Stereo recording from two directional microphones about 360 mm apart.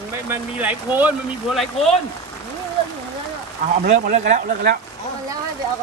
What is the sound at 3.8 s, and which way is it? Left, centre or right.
Speech, centre.